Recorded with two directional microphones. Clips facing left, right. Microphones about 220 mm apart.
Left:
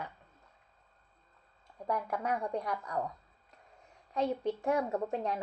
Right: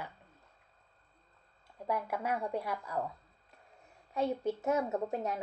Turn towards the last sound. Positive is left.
turn(degrees=-5)  # may be behind; listen again after turning